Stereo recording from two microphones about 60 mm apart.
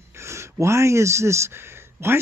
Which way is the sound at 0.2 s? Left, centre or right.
Right.